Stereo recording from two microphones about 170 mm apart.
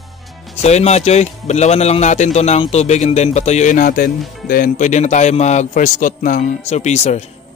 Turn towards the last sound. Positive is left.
turn(degrees=40)  # may be behind; listen again after turning